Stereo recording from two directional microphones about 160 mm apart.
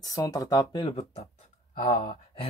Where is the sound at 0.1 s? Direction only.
20° left (ahead or behind).